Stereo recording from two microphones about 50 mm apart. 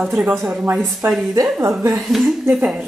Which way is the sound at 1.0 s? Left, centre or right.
Right.